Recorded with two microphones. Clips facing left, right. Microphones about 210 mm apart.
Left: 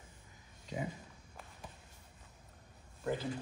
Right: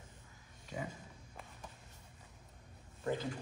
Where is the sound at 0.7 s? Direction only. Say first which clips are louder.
Left 3 dB; 20° left (ahead or behind).